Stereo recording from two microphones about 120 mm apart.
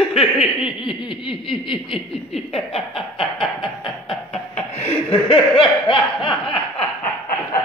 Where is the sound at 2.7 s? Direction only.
45° left (ahead or behind).